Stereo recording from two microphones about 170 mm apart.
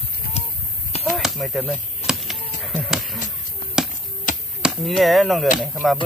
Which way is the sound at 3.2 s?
50° left (ahead or behind).